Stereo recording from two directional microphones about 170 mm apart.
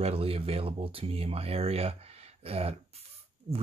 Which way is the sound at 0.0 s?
35° right (ahead or behind).